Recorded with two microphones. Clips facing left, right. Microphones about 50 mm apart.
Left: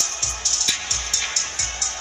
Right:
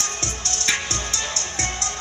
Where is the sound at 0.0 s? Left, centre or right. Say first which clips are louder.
Right 2 dB; right.